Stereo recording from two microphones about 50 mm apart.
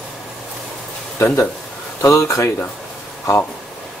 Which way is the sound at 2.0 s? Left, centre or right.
Left.